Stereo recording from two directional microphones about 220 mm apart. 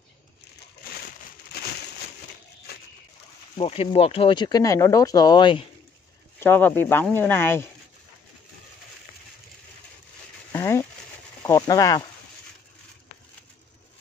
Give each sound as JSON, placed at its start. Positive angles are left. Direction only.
{"t": 3.5, "sound": "speech", "side_deg": 25}
{"t": 6.4, "sound": "speech", "side_deg": 10}
{"t": 10.5, "sound": "a sound", "side_deg": 10}
{"t": 11.4, "sound": "speech", "side_deg": 15}